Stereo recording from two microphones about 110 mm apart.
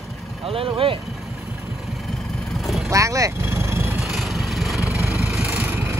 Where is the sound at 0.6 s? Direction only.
55° right (ahead or behind).